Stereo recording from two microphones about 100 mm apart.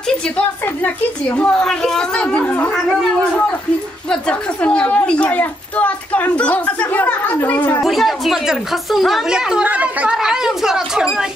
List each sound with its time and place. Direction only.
0.8 s a woman's voice: 15° left (ahead or behind)
4.1 s a woman's voice: 10° left (ahead or behind)
7.8 s a woman's voice: centre (ahead or behind)